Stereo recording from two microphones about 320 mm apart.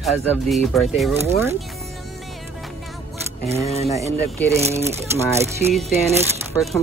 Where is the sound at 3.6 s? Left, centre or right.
Centre.